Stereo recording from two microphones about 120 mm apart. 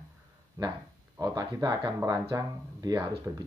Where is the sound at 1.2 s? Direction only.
30° right (ahead or behind).